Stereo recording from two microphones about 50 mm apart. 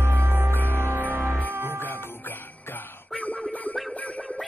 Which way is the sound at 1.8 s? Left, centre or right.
Left.